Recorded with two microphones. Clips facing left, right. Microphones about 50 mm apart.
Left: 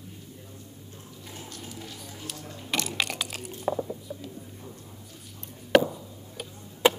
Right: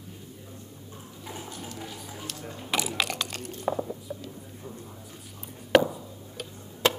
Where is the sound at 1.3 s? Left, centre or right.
Centre.